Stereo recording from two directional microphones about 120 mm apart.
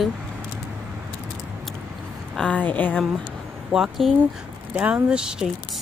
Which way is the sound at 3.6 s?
5° right (ahead or behind).